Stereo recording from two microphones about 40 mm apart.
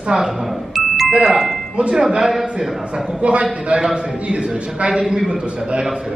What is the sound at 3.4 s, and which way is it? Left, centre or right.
A man's voice, right.